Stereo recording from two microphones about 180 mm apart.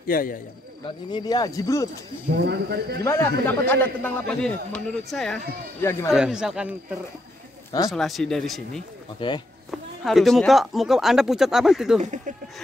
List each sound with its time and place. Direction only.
0.0 s a man's voice: 50° left (ahead or behind)
0.8 s speech: 25° left (ahead or behind)
2.3 s a man's voice: 65° right (ahead or behind)
3.0 s a man's voice: 15° left (ahead or behind)
5.8 s a man's voice: 15° left (ahead or behind)
6.1 s speech: 5° right (ahead or behind)
7.9 s speech: centre (ahead or behind)
9.2 s speech: 25° left (ahead or behind)
9.7 s speech: centre (ahead or behind)
12.0 s speech: 40° right (ahead or behind)